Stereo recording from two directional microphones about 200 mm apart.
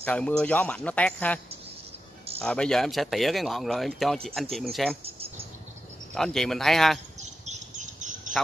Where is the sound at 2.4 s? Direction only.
5° left (ahead or behind).